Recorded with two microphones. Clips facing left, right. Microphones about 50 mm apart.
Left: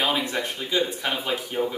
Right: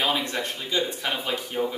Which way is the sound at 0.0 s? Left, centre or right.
Centre.